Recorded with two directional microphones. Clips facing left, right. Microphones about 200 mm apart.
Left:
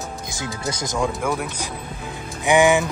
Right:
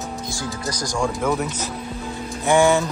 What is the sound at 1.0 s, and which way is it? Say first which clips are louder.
Speech: right 2 dB; 5° left (ahead or behind).